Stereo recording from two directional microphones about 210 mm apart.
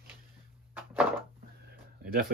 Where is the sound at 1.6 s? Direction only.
45° right (ahead or behind).